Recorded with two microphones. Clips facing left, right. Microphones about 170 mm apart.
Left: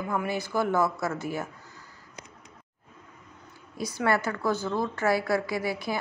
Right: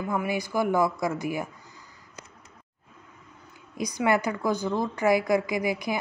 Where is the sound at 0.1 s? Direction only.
10° right (ahead or behind).